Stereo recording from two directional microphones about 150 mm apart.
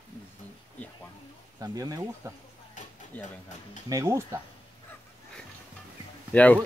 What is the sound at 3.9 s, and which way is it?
Speech, 20° right (ahead or behind).